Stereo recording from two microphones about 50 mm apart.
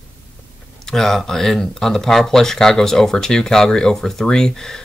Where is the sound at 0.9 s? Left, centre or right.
Centre.